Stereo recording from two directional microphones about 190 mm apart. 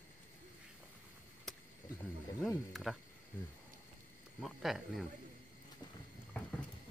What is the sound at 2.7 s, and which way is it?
Speech, centre (ahead or behind).